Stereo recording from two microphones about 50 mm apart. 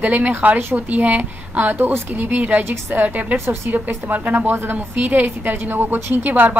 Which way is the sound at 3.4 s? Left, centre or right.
Right.